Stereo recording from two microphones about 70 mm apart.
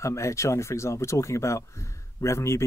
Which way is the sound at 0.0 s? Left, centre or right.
Left.